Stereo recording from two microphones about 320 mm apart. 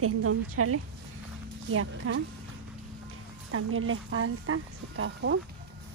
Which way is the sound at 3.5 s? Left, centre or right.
Right.